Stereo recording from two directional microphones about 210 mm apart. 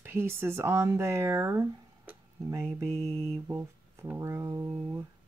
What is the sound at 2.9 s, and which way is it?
Mantra, 30° right (ahead or behind).